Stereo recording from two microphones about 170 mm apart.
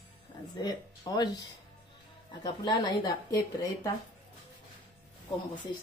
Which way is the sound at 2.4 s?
25° left (ahead or behind).